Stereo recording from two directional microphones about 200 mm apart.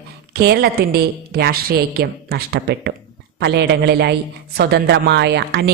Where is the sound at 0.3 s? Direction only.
55° right (ahead or behind).